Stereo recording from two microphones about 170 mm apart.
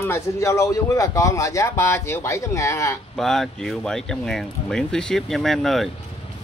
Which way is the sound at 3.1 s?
Centre (ahead or behind).